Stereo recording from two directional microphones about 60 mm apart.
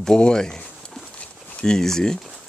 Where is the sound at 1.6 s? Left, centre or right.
Centre.